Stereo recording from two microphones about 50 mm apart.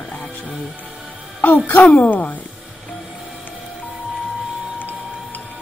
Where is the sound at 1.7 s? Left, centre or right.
Left.